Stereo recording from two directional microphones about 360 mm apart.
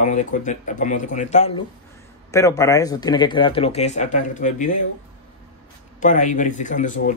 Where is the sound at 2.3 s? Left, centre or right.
Centre.